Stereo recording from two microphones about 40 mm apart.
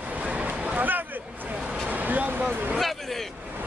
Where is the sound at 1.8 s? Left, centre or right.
Right.